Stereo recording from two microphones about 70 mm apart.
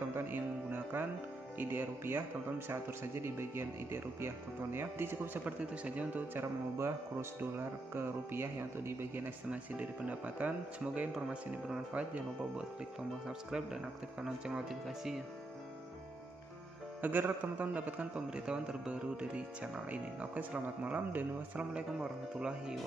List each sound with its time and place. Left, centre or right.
0.1 s music: right
1.6 s speech: right
5.4 s speech: centre
6.8 s speech: right
9.5 s speech: right
17.0 s speech: right
21.7 s speech: centre